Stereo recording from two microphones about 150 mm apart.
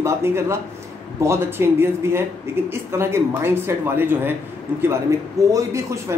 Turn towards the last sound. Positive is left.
turn(degrees=-20)  # may be behind; listen again after turning